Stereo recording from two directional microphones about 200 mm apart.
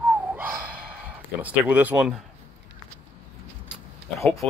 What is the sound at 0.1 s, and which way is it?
Gasp, 10° right (ahead or behind).